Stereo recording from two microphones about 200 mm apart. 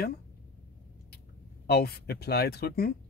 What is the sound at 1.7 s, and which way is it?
Speech, 50° left (ahead or behind).